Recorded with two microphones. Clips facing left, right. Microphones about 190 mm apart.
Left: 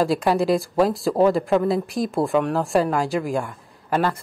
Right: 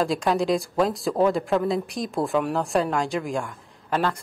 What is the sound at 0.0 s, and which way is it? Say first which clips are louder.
Speech: left 3 dB; 5° left (ahead or behind).